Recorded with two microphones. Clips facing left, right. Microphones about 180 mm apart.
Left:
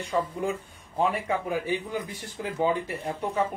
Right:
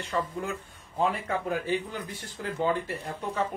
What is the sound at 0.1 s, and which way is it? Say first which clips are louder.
Speech: left 3 dB; 10° left (ahead or behind).